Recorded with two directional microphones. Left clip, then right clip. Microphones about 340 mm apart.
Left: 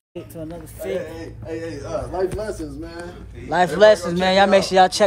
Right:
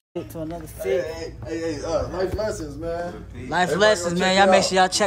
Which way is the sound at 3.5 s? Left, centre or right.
Centre.